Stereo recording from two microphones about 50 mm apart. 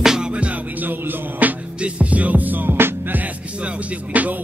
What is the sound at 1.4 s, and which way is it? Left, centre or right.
Music, right.